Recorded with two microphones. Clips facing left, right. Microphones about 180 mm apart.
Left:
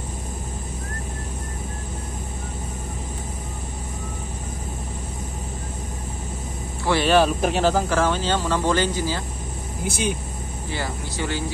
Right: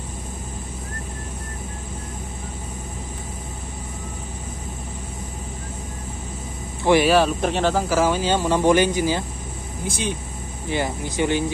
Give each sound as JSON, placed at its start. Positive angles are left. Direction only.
{"t": 6.8, "sound": "a sound", "side_deg": -15}
{"t": 7.1, "sound": "speech", "side_deg": 0}
{"t": 9.8, "sound": "speech", "side_deg": 10}
{"t": 10.7, "sound": "speech", "side_deg": -20}